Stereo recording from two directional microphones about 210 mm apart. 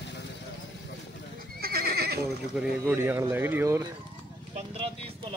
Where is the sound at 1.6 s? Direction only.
50° right (ahead or behind).